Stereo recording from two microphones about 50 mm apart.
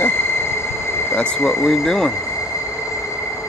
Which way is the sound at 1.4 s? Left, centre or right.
Centre.